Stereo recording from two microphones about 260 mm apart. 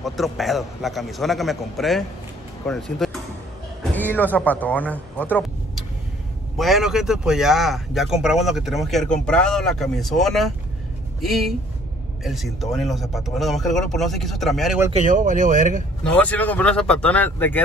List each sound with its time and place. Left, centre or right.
0.0 s a man's voice: centre
14.9 s speech: right
16.0 s a man's voice: centre